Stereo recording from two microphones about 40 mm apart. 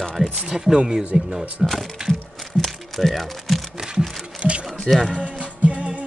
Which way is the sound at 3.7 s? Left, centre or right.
Centre.